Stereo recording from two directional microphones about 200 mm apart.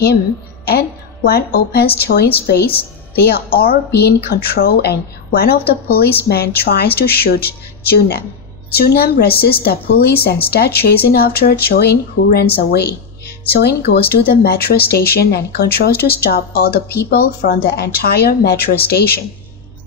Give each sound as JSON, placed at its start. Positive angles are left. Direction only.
{"t": 0.7, "sound": "a woman's voice", "side_deg": 50}